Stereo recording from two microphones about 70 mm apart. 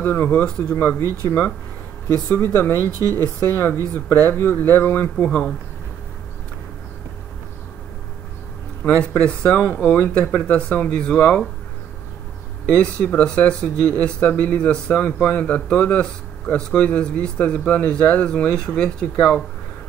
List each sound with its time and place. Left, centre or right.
0.0 s speech: left
0.5 s speech: centre
0.7 s speech: left
2.0 s speech: left
2.4 s speech: left
5.2 s speech: centre
9.2 s speech: centre
9.8 s speech: left
12.6 s speech: centre